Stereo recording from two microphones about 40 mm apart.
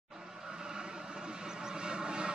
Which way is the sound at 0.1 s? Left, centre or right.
Centre.